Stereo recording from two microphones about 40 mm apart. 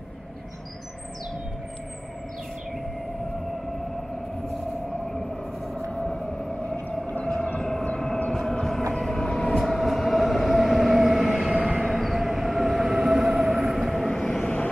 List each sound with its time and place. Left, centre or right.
5.9 s vehicle: centre
7.2 s civil defense siren: left
8.4 s train: centre
9.7 s train: centre
14.1 s vehicle: centre
14.4 s vehicle: left